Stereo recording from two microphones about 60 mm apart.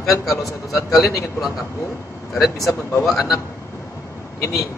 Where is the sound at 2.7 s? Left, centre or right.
Left.